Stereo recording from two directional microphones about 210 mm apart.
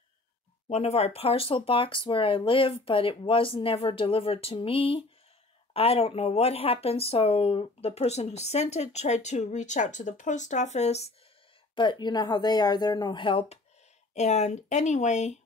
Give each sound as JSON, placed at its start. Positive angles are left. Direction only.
{"t": 0.7, "sound": "speech", "side_deg": 30}